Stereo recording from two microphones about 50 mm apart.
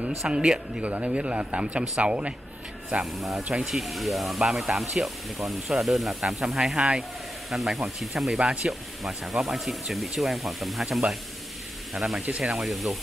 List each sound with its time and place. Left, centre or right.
0.2 s speech: centre
3.2 s speech: centre
12.2 s speech: right
12.4 s speech: centre